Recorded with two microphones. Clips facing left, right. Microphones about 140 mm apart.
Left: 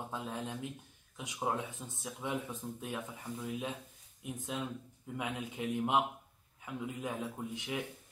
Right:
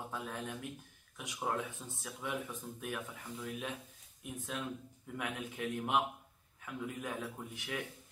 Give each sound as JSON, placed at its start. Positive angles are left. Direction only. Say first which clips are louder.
{"t": 0.1, "sound": "speech", "louder": "left 2 dB", "side_deg": 20}